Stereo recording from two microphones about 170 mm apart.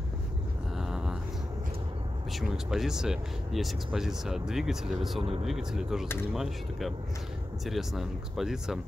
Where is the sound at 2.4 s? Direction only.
Centre (ahead or behind).